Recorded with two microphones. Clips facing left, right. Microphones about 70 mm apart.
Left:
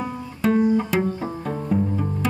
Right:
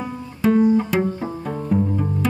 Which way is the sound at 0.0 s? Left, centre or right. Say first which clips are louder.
Right 2 dB; centre.